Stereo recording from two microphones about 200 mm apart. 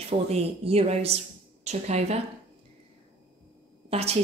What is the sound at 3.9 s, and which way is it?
Speech, 30° right (ahead or behind).